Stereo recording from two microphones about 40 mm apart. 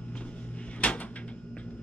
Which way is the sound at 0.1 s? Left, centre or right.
Left.